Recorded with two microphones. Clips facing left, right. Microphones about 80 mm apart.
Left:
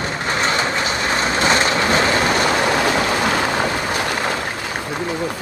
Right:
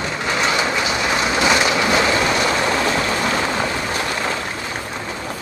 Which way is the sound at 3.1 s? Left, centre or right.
Left.